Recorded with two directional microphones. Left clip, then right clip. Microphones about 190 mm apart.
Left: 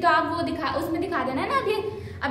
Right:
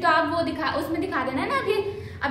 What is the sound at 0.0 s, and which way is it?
A woman's voice, 10° left (ahead or behind).